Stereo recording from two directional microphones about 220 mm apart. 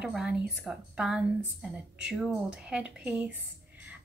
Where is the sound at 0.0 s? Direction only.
5° right (ahead or behind).